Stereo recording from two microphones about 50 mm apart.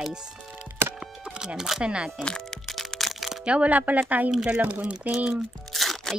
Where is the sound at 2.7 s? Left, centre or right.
Centre.